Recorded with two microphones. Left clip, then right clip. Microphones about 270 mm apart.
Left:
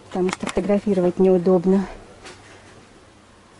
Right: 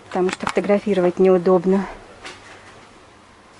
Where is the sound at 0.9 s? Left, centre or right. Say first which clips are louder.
Right 1 dB; right.